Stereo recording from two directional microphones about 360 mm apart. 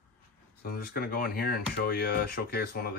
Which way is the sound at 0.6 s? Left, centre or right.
Left.